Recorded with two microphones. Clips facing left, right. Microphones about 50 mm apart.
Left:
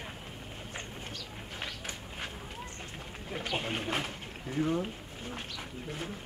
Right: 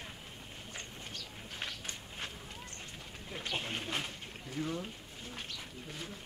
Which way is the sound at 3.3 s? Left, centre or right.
Left.